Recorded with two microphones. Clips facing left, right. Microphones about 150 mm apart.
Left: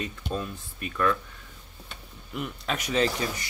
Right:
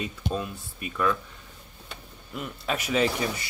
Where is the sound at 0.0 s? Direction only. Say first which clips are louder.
Right 1 dB; 10° right (ahead or behind).